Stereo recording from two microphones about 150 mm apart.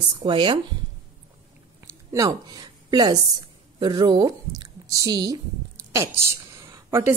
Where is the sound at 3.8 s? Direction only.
30° right (ahead or behind).